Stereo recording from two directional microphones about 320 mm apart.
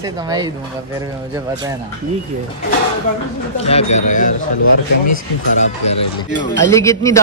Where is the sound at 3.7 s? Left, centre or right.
Centre.